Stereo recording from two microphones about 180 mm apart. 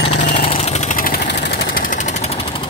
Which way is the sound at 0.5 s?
35° left (ahead or behind).